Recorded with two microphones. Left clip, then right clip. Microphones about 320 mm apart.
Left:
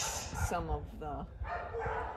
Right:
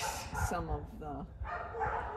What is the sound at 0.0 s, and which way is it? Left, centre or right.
Dog, centre.